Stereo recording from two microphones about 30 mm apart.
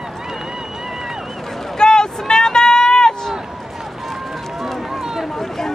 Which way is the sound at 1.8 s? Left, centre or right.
Left.